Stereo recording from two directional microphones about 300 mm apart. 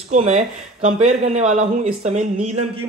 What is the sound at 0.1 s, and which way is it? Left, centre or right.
Speech, right.